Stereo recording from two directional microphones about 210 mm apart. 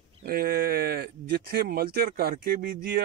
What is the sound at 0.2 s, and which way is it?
Speech, 45° right (ahead or behind).